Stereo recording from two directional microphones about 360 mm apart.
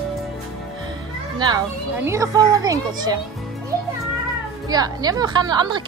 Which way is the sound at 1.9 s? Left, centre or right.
Centre.